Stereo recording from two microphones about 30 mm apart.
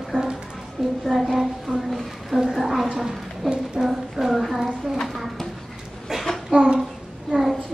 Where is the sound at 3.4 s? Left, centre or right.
Centre.